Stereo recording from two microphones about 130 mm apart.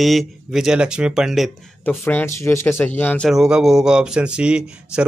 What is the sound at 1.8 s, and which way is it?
Speech, 15° left (ahead or behind).